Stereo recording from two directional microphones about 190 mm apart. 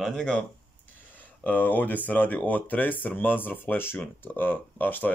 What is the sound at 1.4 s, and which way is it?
Speech, 10° left (ahead or behind).